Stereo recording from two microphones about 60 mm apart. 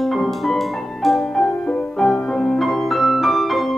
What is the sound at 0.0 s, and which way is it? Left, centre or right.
Music, centre.